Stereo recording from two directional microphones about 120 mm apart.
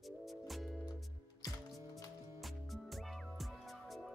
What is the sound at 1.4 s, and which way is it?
Music, 30° left (ahead or behind).